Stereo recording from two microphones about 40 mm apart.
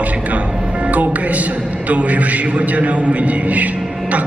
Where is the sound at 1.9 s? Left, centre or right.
Right.